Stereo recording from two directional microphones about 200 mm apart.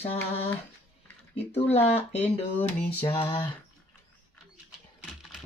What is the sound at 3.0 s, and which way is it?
Speech, 25° left (ahead or behind).